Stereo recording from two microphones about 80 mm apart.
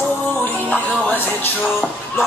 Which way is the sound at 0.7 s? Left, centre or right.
Left.